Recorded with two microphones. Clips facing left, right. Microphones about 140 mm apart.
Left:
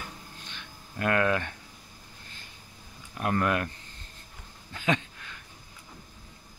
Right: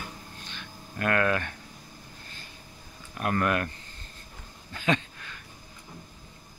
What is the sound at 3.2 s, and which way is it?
Speech, 20° left (ahead or behind).